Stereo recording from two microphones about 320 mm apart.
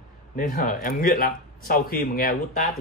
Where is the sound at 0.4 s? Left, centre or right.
Left.